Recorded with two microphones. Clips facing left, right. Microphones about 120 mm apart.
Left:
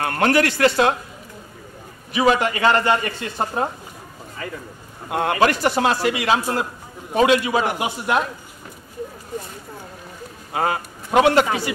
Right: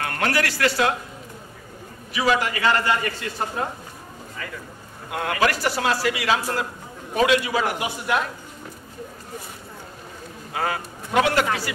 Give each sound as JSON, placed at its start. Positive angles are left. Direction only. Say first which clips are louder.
{"t": 0.0, "sound": "speech", "louder": "left 5 dB", "side_deg": 35}
{"t": 0.3, "sound": "a man's voice", "louder": "left 6 dB", "side_deg": 25}
{"t": 2.1, "sound": "a man's voice", "louder": "left 4 dB", "side_deg": 25}
{"t": 10.5, "sound": "a man's voice", "louder": "left 4 dB", "side_deg": 30}